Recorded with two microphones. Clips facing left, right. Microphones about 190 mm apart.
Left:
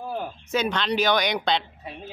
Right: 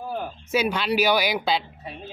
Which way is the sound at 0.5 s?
10° right (ahead or behind).